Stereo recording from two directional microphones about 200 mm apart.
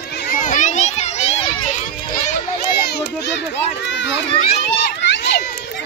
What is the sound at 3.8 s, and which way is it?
Children playing, 60° left (ahead or behind).